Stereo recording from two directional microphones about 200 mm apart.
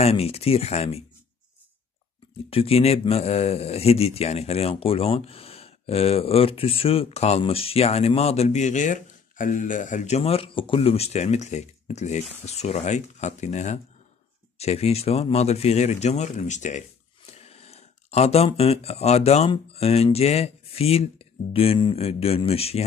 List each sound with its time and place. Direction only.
0.0 s speech: 30° left (ahead or behind)
2.5 s speech: 30° left (ahead or behind)